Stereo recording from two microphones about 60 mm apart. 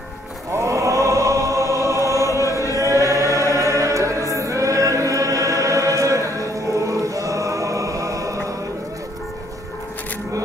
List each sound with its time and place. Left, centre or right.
0.5 s choir: right
2.2 s chant: left
2.8 s choir: right